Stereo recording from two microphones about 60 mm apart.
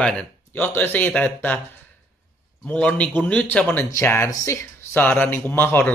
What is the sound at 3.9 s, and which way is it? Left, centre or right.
Speech, left.